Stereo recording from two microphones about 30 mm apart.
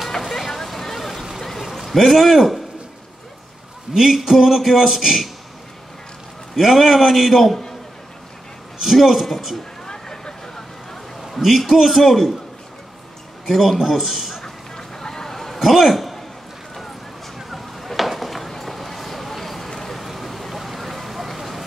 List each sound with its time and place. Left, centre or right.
0.2 s vehicle: centre
1.6 s a man's voice: centre
3.9 s a man's voice: centre
6.5 s a man's voice: centre
8.8 s a man's voice: centre
9.8 s vehicle: centre
11.4 s a man's voice: centre
13.5 s a man's voice: centre
14.4 s a sound: centre
15.6 s a man's voice: centre
17.4 s a sound: centre
19.7 s vehicle: centre